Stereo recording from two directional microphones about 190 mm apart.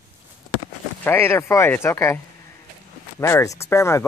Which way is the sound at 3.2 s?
15° left (ahead or behind).